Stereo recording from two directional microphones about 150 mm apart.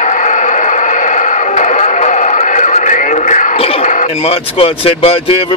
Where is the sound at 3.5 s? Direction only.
40° left (ahead or behind).